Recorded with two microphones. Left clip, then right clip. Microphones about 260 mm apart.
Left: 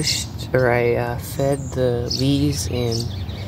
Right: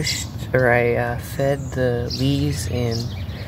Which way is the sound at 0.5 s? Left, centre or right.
Centre.